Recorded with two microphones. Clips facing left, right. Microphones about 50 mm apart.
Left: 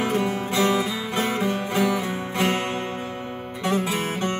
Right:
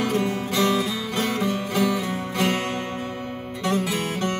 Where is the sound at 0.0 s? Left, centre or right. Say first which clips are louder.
Even; left.